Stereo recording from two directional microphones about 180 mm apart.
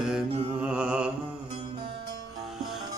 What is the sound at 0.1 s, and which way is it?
Mantra, 5° right (ahead or behind).